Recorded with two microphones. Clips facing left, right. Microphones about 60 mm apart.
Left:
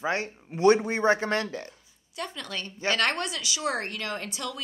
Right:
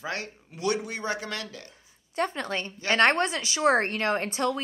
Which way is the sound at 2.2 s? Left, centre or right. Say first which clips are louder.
Right 6 dB; right.